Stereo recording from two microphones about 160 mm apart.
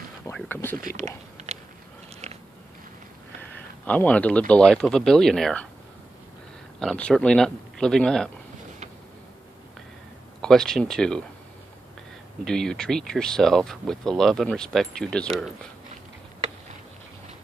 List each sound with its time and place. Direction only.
0.3 s speech: 15° left (ahead or behind)
1.5 s a sound: 45° right (ahead or behind)
2.2 s biting: 45° right (ahead or behind)
3.8 s speech: 10° left (ahead or behind)
6.8 s speech: 5° left (ahead or behind)
10.4 s speech: 5° left (ahead or behind)
12.4 s speech: 5° left (ahead or behind)